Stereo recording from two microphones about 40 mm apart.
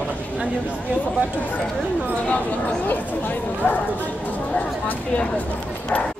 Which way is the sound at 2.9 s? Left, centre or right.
Left.